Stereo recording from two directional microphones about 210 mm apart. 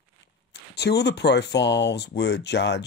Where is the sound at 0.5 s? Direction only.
55° left (ahead or behind).